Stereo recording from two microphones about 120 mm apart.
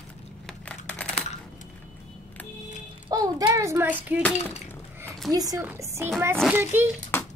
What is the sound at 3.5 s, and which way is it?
Child singing, 20° right (ahead or behind).